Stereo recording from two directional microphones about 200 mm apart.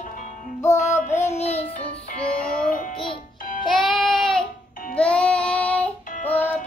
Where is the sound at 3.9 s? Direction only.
Centre (ahead or behind).